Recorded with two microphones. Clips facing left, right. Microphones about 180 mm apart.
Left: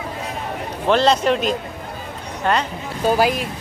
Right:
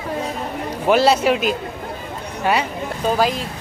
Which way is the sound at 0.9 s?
5° right (ahead or behind).